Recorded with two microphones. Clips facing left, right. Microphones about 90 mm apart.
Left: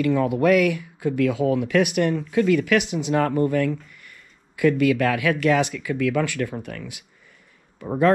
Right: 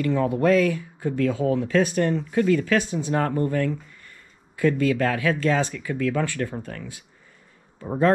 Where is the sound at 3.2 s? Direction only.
90° left.